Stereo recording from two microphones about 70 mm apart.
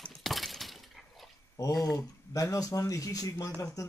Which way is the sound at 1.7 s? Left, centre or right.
Centre.